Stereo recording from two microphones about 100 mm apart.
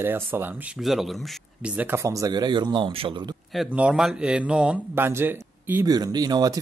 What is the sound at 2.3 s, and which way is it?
Speech, 45° right (ahead or behind).